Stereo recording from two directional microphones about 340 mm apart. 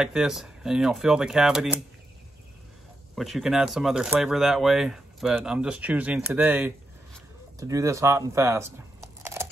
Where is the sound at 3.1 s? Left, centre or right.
Centre.